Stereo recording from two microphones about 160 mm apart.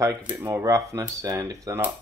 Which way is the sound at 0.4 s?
20° right (ahead or behind).